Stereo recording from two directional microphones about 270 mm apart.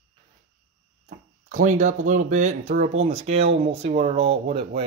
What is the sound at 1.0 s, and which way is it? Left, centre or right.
Speech, right.